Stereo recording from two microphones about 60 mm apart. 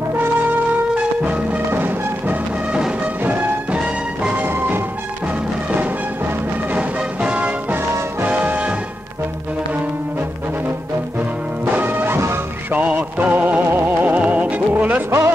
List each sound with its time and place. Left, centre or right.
0.9 s music: right
3.7 s music: centre
4.4 s music: right
6.7 s music: right
11.7 s music: right
12.7 s music: right
15.0 s music: right